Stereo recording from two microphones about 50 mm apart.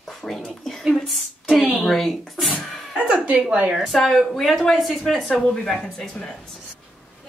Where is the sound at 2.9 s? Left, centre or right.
Right.